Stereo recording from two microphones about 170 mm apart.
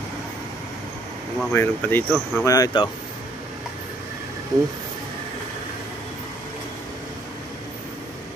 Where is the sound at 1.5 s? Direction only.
15° left (ahead or behind).